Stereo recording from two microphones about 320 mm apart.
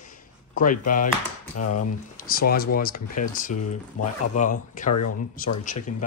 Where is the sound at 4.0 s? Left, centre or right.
Left.